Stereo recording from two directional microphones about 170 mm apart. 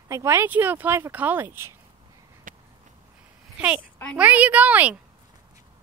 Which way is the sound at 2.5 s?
50° right (ahead or behind).